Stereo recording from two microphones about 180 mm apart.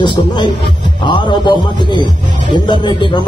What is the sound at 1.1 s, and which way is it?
Speech, 25° left (ahead or behind).